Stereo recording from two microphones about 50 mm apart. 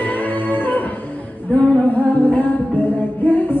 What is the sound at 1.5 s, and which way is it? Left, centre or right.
A capella, left.